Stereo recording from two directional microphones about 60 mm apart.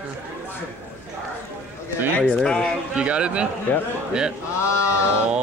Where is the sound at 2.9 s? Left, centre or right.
Centre.